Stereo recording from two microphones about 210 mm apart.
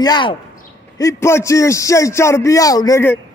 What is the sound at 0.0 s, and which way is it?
A man's voice, 20° left (ahead or behind).